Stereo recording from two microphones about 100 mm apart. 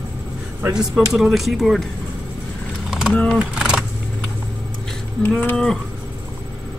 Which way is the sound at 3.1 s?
5° left (ahead or behind).